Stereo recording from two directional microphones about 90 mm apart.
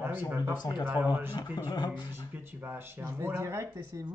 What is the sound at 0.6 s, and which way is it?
A man's voice, 55° left (ahead or behind).